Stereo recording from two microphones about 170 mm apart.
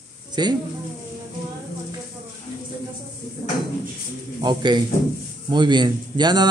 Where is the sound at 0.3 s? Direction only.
25° right (ahead or behind).